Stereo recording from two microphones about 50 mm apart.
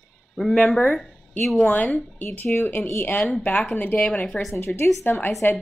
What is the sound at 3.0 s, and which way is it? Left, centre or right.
Speech, left.